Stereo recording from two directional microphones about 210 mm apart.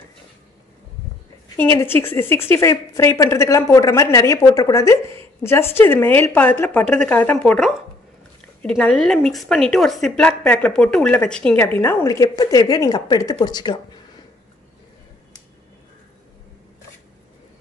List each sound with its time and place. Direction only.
1.6 s a woman's voice: 10° left (ahead or behind)